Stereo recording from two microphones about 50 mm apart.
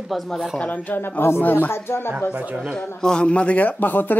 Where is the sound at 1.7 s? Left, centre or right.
Left.